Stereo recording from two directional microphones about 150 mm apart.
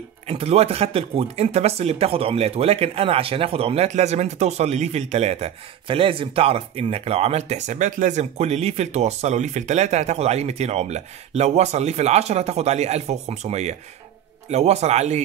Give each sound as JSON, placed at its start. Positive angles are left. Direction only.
{"t": 0.3, "sound": "speech", "side_deg": -45}